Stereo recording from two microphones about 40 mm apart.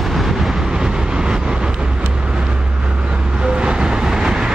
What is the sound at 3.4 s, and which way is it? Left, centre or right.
Vehicle, right.